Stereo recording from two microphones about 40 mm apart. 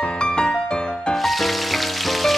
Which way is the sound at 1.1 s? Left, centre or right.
Centre.